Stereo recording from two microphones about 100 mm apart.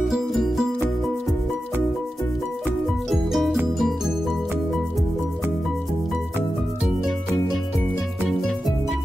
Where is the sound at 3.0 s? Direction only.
Centre (ahead or behind).